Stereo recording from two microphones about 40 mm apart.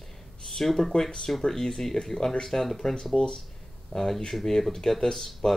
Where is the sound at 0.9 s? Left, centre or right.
Centre.